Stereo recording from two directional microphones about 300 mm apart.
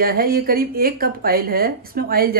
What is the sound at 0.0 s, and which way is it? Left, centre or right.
A woman's voice, right.